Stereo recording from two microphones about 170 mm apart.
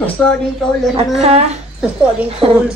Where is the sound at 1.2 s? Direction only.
40° right (ahead or behind).